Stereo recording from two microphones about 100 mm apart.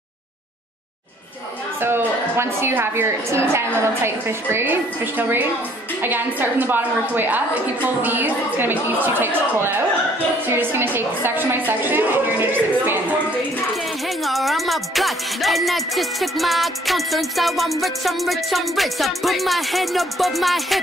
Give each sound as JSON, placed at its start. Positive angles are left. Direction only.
{"t": 1.8, "sound": "a woman's voice", "side_deg": -25}
{"t": 14.2, "sound": "music", "side_deg": 0}